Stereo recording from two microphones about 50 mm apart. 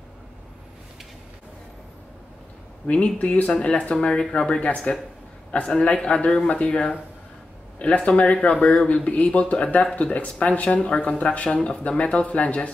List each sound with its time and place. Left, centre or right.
2.9 s speech: left